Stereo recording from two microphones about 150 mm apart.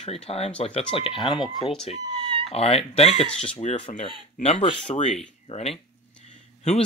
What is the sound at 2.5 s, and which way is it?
Speech, 45° left (ahead or behind).